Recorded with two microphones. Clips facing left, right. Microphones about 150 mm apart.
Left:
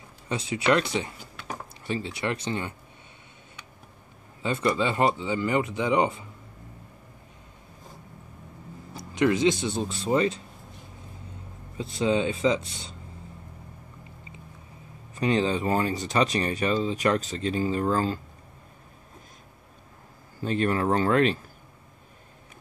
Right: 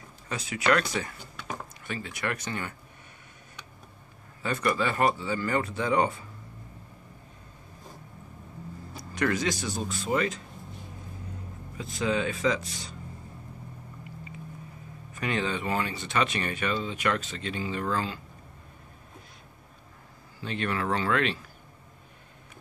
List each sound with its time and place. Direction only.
0.3 s speech: 30° left (ahead or behind)
4.4 s speech: 25° left (ahead or behind)
8.9 s speech: 20° left (ahead or behind)
11.7 s speech: 30° left (ahead or behind)
15.1 s speech: 30° left (ahead or behind)
20.3 s speech: 40° left (ahead or behind)